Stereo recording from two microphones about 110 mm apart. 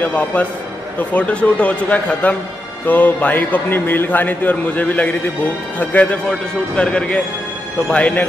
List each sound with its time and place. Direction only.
0.0 s a man's voice: 15° left (ahead or behind)